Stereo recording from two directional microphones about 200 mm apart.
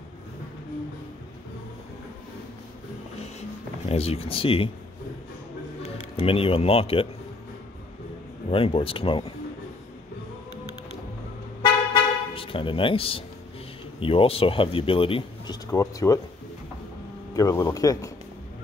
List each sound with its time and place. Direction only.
3.9 s speech: 30° left (ahead or behind)
5.8 s speech: 30° left (ahead or behind)
8.5 s speech: 25° left (ahead or behind)
11.6 s toot: 25° left (ahead or behind)
13.9 s speech: 25° left (ahead or behind)
17.4 s speech: 20° left (ahead or behind)